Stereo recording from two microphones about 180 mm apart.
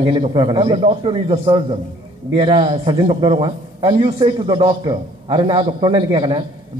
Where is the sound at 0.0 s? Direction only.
25° right (ahead or behind).